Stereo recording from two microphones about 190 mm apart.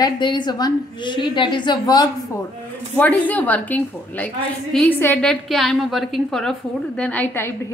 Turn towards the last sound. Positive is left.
turn(degrees=10)  # may be behind; listen again after turning